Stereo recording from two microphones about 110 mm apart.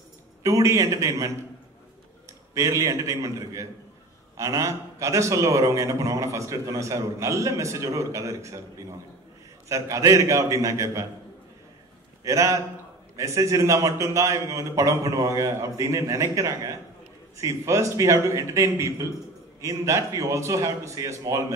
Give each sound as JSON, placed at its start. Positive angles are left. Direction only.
{"t": 0.4, "sound": "a man's voice", "side_deg": -30}
{"t": 2.5, "sound": "a man's voice", "side_deg": -30}
{"t": 12.3, "sound": "a man's voice", "side_deg": -30}